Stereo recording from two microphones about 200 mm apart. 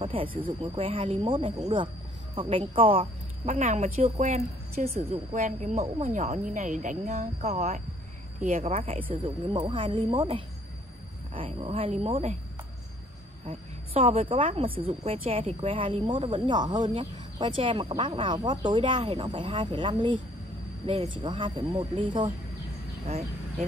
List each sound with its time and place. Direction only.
0.0 s speech: 25° right (ahead or behind)
13.5 s speech: 30° right (ahead or behind)